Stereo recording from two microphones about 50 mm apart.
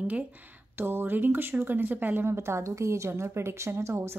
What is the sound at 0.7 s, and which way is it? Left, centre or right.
Speech, right.